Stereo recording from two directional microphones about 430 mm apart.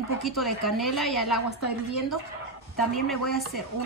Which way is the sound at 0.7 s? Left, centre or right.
Centre.